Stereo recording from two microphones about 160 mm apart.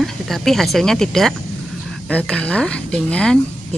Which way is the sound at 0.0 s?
Centre (ahead or behind).